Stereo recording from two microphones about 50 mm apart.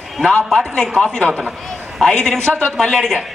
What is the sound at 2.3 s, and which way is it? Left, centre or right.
Speech, right.